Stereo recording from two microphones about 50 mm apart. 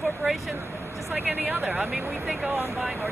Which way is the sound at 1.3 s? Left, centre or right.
Right.